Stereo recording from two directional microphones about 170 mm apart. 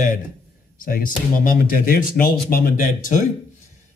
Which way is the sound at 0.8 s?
55° left (ahead or behind).